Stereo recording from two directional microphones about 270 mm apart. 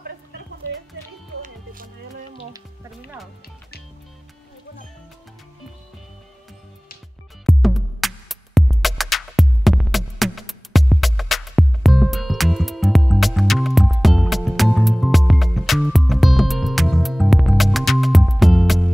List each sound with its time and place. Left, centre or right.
1.4 s music: right
7.4 s music: centre